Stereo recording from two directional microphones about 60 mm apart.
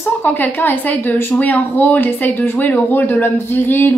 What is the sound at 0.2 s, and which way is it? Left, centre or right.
A woman's voice, left.